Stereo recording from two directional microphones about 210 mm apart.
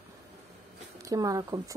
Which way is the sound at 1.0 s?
15° right (ahead or behind).